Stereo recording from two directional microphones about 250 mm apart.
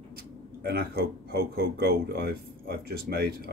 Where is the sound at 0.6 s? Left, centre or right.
Right.